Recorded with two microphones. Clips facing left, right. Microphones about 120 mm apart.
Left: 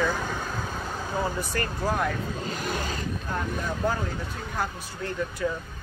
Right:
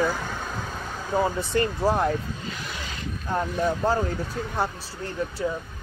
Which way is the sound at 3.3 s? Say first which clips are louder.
Right 7 dB; 30° right (ahead or behind).